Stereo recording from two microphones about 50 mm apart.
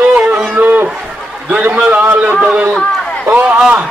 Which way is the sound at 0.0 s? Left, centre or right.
Right.